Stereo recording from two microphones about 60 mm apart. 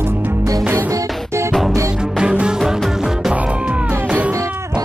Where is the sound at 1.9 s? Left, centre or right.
Centre.